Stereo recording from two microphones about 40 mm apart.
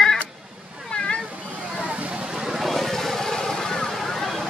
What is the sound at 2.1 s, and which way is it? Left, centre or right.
Vehicle, centre.